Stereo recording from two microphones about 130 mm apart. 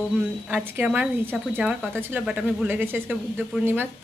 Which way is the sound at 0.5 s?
10° right (ahead or behind).